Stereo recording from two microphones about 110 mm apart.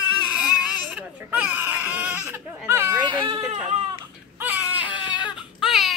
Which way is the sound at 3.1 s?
50° right (ahead or behind).